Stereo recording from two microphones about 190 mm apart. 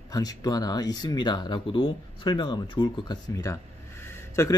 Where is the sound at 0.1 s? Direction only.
20° left (ahead or behind).